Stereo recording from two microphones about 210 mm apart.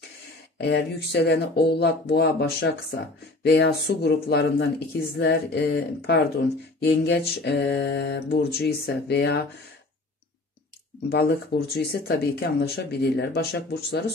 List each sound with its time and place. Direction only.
0.6 s speech: 50° left (ahead or behind)
11.1 s speech: 50° left (ahead or behind)